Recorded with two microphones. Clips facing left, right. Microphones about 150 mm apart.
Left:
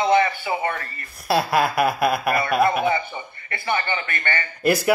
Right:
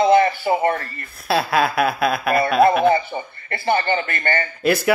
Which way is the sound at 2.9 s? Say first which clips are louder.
Right 5 dB; 35° right (ahead or behind).